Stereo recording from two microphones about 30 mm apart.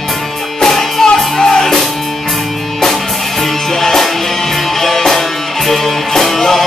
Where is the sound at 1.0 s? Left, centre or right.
Centre.